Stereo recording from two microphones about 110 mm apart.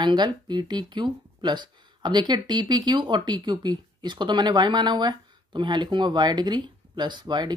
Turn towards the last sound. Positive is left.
turn(degrees=-40)  # may be behind; listen again after turning